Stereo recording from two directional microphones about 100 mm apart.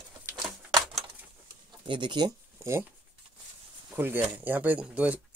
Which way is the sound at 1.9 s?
50° right (ahead or behind).